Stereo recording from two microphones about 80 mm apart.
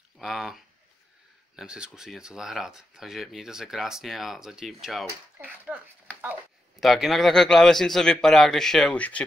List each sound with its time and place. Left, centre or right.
0.2 s a sound: centre
1.6 s speech: centre
5.7 s speech: centre
6.8 s speech: centre
8.9 s speech: centre